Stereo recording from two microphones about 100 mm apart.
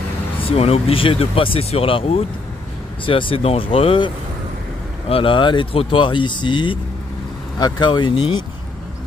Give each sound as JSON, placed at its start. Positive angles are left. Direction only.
{"t": 0.4, "sound": "speech", "side_deg": 80}
{"t": 3.1, "sound": "speech", "side_deg": 60}
{"t": 5.1, "sound": "speech", "side_deg": 60}